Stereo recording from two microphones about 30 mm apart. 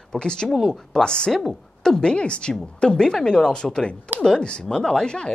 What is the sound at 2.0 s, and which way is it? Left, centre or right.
A woman's voice, left.